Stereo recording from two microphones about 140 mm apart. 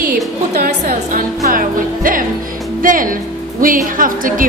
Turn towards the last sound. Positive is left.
turn(degrees=-75)  # may be behind; listen again after turning